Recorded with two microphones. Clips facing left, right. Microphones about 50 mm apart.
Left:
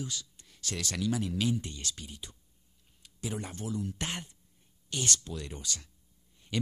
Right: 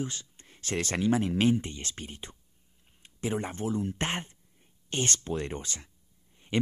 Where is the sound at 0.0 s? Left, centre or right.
Right.